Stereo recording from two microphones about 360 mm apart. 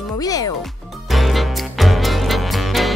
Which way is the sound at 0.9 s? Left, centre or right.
Centre.